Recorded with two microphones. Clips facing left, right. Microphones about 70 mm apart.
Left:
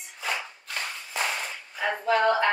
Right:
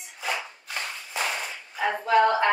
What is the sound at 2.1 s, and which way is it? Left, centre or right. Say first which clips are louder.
Speech: right 2 dB; centre.